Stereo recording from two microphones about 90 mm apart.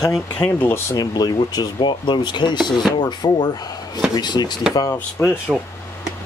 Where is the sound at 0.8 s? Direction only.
45° left (ahead or behind).